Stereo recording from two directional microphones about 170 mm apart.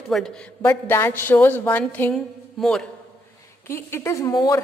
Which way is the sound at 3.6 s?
15° left (ahead or behind).